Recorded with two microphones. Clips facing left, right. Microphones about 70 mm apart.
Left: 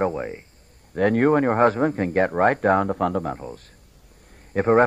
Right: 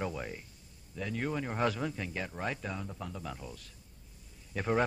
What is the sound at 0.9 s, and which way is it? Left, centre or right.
A man's voice, left.